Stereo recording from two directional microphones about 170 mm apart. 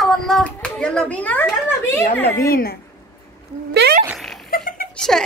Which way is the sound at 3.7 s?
80° right.